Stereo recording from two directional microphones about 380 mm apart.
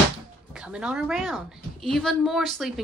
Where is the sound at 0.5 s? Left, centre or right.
Centre.